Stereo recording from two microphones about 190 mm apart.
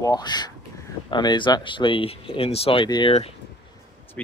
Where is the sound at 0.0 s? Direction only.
20° left (ahead or behind).